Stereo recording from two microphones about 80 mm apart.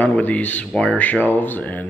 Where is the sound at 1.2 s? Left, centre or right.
Left.